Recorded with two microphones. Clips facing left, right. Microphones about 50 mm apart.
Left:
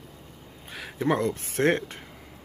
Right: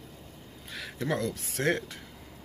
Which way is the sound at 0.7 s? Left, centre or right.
Left.